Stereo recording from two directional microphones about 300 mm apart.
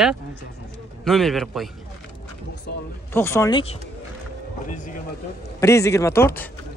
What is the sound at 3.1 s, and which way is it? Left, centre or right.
Speech, centre.